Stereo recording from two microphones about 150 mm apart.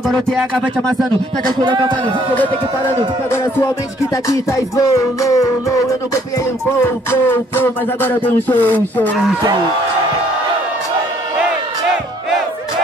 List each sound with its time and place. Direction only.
0.1 s speech: 5° left (ahead or behind)
1.6 s a man's voice: 30° right (ahead or behind)
3.3 s music: 15° left (ahead or behind)
9.1 s speech: centre (ahead or behind)